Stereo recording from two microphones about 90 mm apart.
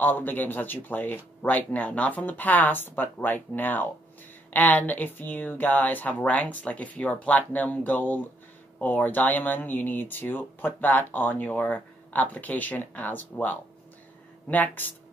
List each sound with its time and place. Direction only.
0.0 s speech: 20° left (ahead or behind)